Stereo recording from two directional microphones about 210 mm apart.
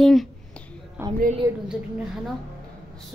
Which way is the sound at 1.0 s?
10° right (ahead or behind).